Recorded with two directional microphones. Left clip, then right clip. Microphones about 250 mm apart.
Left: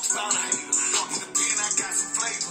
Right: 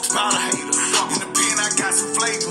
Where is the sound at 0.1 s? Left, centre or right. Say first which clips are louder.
Right 9 dB; right.